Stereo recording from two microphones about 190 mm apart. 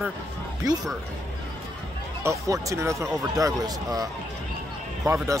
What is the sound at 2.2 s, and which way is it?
Speech, 15° right (ahead or behind).